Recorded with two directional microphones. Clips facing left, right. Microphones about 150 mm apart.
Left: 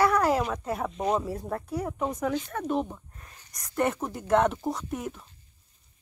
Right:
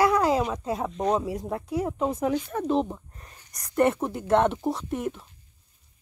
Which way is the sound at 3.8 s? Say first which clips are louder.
Right 5 dB; 5° right (ahead or behind).